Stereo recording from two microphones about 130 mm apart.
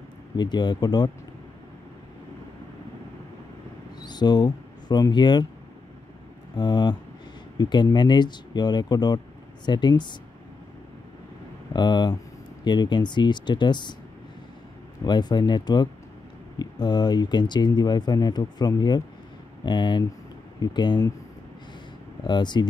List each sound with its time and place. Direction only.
0.4 s speech: 35° left (ahead or behind)
4.0 s speech: 35° left (ahead or behind)
6.5 s speech: 35° left (ahead or behind)
11.7 s speech: 35° left (ahead or behind)
15.0 s speech: 35° left (ahead or behind)
22.2 s speech: 35° left (ahead or behind)